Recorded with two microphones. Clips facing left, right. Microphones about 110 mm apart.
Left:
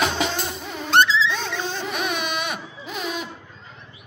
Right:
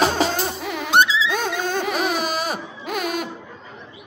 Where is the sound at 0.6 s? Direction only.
80° right.